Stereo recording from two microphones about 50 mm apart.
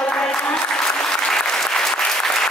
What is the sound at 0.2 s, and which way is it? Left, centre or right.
Applause, centre.